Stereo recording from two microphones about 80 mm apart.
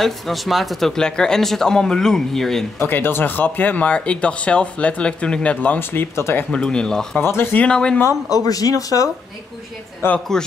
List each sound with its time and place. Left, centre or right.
0.0 s speech: centre
2.8 s speech: left
5.8 s speech: left
6.5 s speech: centre
7.2 s speech: left
7.6 s speech: centre
8.3 s speech: left
10.0 s a woman's voice: left